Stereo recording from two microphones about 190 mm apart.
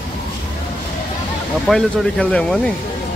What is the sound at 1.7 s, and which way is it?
Speech, 5° left (ahead or behind).